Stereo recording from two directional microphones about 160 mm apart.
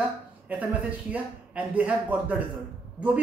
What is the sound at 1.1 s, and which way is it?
A man's voice, 10° right (ahead or behind).